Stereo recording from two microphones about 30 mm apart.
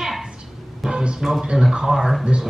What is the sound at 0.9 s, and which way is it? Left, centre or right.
Speech, right.